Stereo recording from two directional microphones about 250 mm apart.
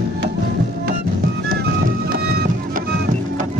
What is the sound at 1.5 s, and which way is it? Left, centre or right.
Music, right.